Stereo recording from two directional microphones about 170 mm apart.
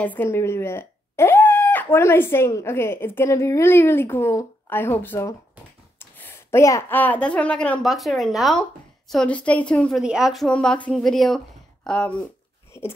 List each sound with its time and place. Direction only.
0.0 s a woman's voice: 10° left (ahead or behind)